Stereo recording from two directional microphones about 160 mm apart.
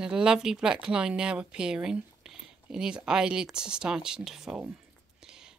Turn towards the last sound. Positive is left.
turn(degrees=-5)  # may be behind; listen again after turning